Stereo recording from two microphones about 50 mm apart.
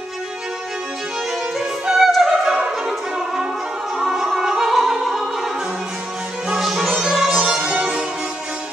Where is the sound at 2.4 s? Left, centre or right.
Centre.